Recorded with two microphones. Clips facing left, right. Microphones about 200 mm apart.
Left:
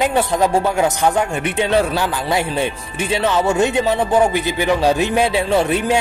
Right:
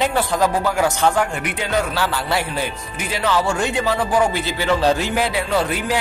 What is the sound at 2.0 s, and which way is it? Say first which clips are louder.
Speech: left 2 dB; 15° left (ahead or behind).